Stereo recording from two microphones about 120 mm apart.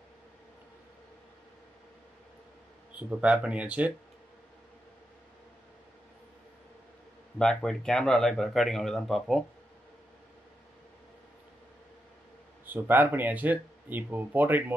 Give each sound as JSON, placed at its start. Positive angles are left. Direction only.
{"t": 2.9, "sound": "speech", "side_deg": -10}
{"t": 7.3, "sound": "speech", "side_deg": 5}
{"t": 12.6, "sound": "speech", "side_deg": -15}